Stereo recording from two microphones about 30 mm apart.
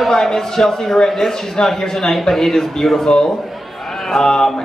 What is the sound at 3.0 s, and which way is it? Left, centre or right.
Speech, centre.